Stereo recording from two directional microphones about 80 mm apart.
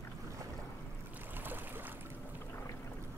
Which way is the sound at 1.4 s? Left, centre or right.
Right.